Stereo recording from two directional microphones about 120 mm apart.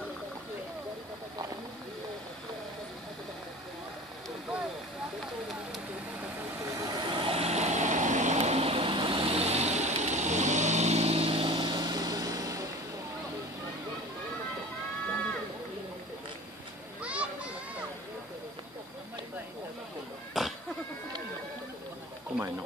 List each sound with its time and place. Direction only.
6.7 s vehicle: 30° right (ahead or behind)
17.0 s children playing: 10° right (ahead or behind)
20.4 s a sound: 5° right (ahead or behind)